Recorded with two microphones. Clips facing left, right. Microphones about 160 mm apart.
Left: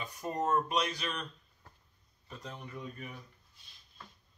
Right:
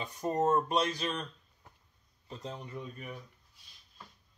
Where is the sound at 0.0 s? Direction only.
25° right (ahead or behind).